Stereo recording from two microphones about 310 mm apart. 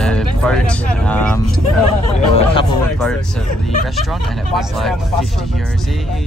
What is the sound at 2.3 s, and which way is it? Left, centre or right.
Speech, centre.